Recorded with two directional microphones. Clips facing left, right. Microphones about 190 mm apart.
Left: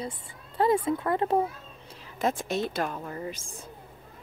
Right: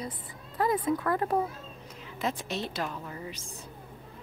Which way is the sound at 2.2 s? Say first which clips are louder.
Left 5 dB; 50° left (ahead or behind).